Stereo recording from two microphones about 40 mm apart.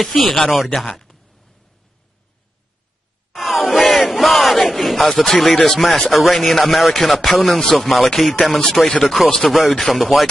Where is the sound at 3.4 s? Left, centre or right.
Centre.